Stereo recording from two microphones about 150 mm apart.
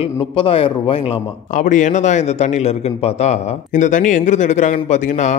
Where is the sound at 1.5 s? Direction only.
60° left (ahead or behind).